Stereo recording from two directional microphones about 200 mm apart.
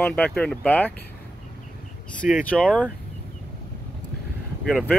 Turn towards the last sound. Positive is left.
turn(degrees=0)  # may be behind; listen again after turning